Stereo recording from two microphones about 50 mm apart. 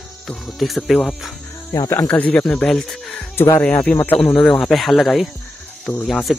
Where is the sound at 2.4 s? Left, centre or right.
Centre.